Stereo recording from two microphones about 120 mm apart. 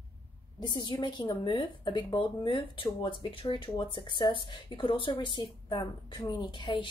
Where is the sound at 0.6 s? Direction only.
40° left (ahead or behind).